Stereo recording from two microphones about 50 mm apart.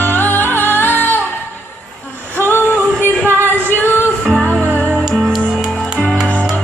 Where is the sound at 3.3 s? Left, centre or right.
Left.